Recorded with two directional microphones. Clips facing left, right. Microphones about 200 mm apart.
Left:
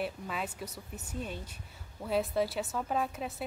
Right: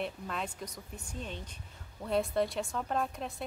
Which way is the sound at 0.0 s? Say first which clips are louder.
Left 1 dB; 5° left (ahead or behind).